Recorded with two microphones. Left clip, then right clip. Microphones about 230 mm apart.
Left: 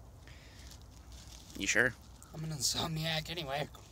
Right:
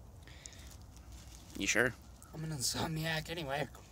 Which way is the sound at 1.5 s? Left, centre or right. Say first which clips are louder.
Left 2 dB; centre.